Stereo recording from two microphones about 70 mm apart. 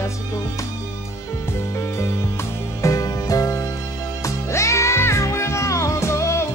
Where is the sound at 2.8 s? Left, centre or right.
Left.